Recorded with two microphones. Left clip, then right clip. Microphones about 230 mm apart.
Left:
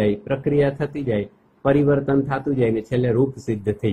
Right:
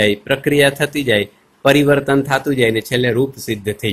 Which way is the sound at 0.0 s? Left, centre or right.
Centre.